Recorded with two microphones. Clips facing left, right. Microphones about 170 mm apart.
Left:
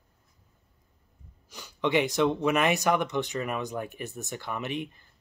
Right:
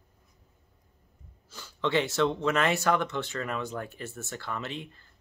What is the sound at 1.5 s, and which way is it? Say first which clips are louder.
Speech: left 2 dB; 15° left (ahead or behind).